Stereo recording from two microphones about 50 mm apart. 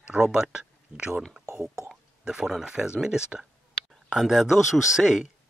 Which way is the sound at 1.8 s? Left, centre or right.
Centre.